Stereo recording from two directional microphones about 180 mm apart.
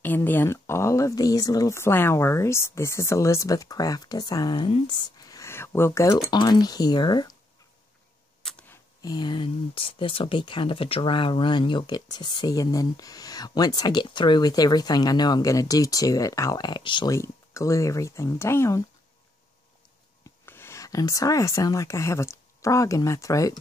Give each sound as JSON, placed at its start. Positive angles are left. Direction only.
{"t": 0.0, "sound": "speech", "side_deg": 10}
{"t": 8.4, "sound": "a sound", "side_deg": 5}
{"t": 9.0, "sound": "speech", "side_deg": 25}
{"t": 20.4, "sound": "a woman's voice", "side_deg": 15}